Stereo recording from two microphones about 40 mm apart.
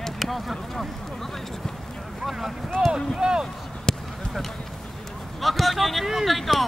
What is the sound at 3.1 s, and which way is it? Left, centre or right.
Speech, right.